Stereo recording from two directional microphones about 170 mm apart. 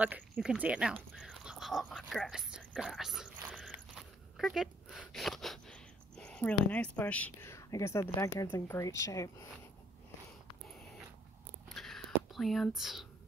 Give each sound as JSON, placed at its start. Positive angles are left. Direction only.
{"t": 0.0, "sound": "speech", "side_deg": -5}
{"t": 1.1, "sound": "dog", "side_deg": -5}
{"t": 6.6, "sound": "speech", "side_deg": 10}
{"t": 11.7, "sound": "whispering", "side_deg": 0}